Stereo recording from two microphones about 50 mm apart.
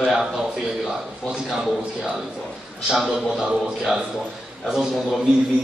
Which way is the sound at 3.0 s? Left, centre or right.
Right.